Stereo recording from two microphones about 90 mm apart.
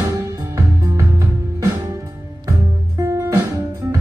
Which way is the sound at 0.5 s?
35° right (ahead or behind).